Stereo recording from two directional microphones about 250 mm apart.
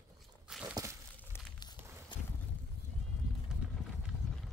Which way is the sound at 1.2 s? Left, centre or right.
Centre.